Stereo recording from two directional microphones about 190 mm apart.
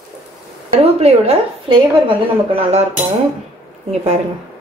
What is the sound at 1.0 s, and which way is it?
A woman's voice, 30° right (ahead or behind).